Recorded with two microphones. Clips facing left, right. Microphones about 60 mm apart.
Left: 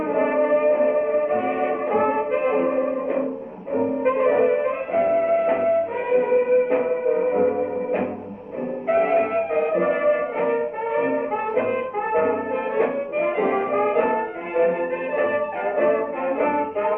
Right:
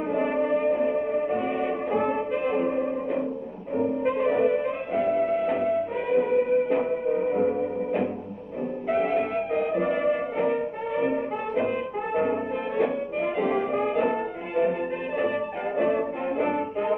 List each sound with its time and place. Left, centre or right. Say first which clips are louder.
0.1 s music: left 5 dB; left
2.0 s brass instrument: left 5 dB; left
3.7 s music: left 4 dB; left